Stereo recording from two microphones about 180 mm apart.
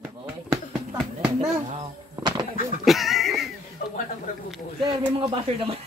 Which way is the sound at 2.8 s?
Centre (ahead or behind).